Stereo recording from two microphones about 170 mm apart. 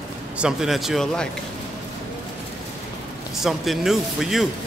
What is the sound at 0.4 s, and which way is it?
Speech, 5° right (ahead or behind).